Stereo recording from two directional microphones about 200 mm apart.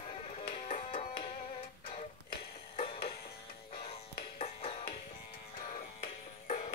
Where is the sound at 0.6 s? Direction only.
30° left (ahead or behind).